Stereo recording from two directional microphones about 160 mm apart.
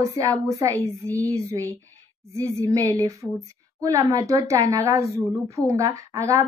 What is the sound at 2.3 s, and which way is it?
A woman's voice, 20° right (ahead or behind).